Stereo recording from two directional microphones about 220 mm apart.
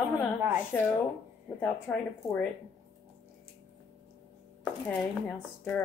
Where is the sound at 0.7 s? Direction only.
10° left (ahead or behind).